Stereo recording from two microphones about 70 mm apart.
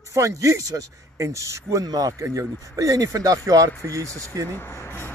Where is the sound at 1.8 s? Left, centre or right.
Right.